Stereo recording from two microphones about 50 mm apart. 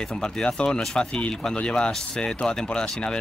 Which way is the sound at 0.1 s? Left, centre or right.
Centre.